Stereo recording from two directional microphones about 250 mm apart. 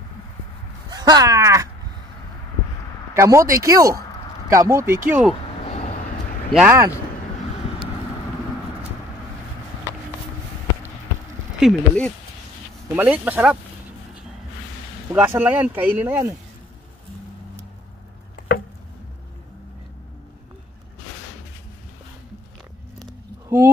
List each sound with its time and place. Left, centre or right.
0.8 s speech: centre
3.2 s speech: centre
5.6 s a sound: left
6.5 s speech: centre
11.6 s speech: centre
12.9 s speech: centre
15.1 s speech: centre